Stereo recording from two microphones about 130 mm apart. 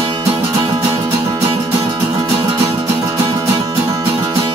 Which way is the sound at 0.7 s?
20° right (ahead or behind).